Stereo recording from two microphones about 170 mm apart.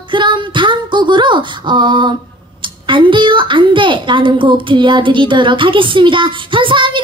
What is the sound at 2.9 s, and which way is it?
A woman's voice, 30° right (ahead or behind).